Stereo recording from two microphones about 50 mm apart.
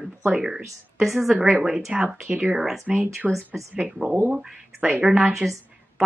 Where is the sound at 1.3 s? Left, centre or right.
Right.